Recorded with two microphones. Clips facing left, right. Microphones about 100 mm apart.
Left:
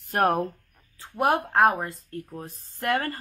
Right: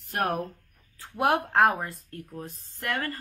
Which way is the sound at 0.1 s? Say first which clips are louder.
Left 5 dB; 60° left (ahead or behind).